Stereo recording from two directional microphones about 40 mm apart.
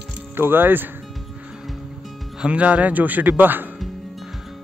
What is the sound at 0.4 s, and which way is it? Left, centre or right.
Speech, right.